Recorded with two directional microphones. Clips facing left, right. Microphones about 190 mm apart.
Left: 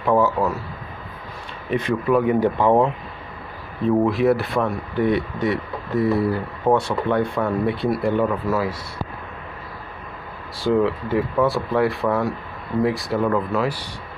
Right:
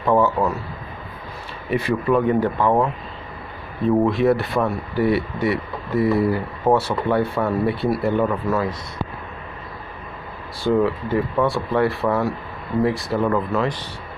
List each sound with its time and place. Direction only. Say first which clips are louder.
0.0 s speech: right 1 dB; centre (ahead or behind)
1.7 s speech: right 1 dB; 5° right (ahead or behind)
2.1 s speech: left 2 dB; 10° left (ahead or behind)
3.8 s speech: even; centre (ahead or behind)
10.6 s speech: even; centre (ahead or behind)